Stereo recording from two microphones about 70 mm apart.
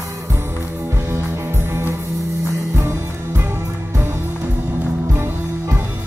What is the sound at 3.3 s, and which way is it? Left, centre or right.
Music, right.